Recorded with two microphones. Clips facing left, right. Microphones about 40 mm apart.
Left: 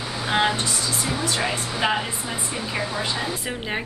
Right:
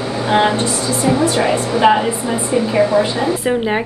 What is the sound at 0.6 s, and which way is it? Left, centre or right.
A woman's voice, right.